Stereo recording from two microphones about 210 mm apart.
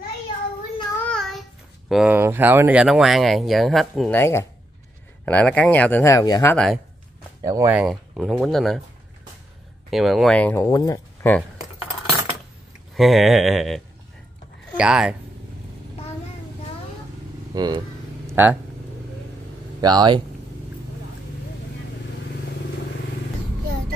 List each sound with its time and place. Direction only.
1.0 s child singing: centre (ahead or behind)
1.9 s speech: 5° right (ahead or behind)
4.2 s speech: 10° left (ahead or behind)
6.5 s speech: 5° left (ahead or behind)
7.4 s speech: 15° right (ahead or behind)
7.8 s speech: centre (ahead or behind)
9.8 s speech: centre (ahead or behind); by 11.3 s 15° left (ahead or behind)
12.9 s speech: centre (ahead or behind)
17.6 s speech: 20° right (ahead or behind)
19.8 s speech: 20° right (ahead or behind)